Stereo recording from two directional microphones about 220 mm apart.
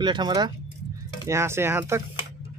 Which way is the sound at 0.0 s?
20° right (ahead or behind).